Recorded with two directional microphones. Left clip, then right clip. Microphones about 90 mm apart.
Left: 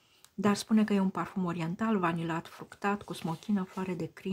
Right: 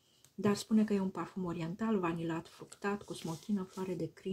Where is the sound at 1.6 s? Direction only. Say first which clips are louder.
Left 5 dB; 40° left (ahead or behind).